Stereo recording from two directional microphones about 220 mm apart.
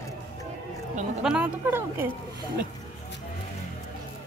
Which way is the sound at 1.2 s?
5° right (ahead or behind).